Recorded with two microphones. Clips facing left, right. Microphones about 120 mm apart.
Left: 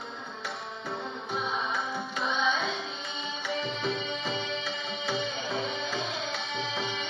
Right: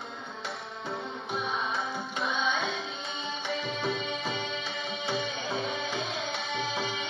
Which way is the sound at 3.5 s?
30° left (ahead or behind).